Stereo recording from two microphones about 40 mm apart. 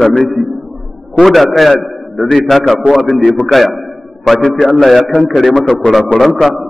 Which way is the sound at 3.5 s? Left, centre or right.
Centre.